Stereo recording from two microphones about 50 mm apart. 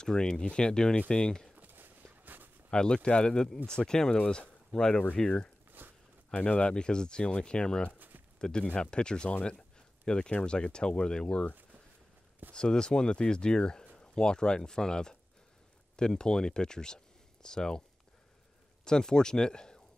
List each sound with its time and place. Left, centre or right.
0.0 s speech: centre
1.7 s walk: right
2.7 s speech: centre
5.8 s a sound: right
6.3 s speech: left
12.5 s speech: centre
18.9 s speech: centre